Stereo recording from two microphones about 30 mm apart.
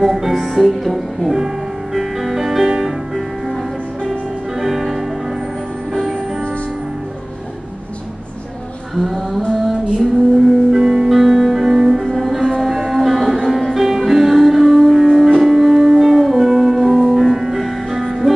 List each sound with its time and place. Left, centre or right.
0.0 s music: centre
9.9 s music: centre
10.8 s music: right
11.1 s music: centre
11.6 s music: centre
12.2 s music: centre
16.2 s music: centre
16.4 s music: centre